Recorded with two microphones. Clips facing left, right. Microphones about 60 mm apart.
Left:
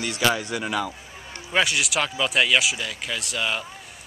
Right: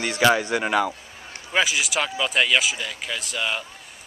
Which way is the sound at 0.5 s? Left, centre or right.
Right.